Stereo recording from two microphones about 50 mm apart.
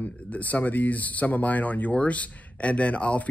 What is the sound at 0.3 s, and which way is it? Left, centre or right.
A man's voice, left.